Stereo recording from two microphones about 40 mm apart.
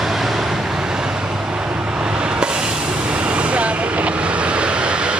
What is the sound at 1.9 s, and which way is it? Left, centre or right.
Vehicle, right.